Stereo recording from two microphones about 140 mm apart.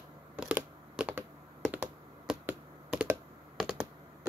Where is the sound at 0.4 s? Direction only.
10° right (ahead or behind).